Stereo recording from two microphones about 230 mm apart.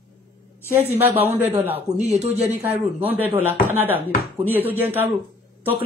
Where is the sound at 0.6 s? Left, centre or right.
Centre.